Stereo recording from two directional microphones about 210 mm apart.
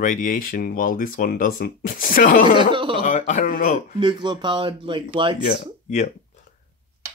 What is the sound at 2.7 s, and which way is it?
Speech, 25° right (ahead or behind).